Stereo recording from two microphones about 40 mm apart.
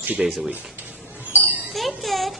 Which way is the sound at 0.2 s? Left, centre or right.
Right.